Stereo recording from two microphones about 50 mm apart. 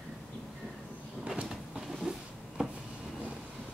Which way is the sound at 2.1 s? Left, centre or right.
Centre.